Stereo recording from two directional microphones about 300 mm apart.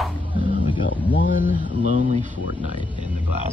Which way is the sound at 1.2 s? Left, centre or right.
Left.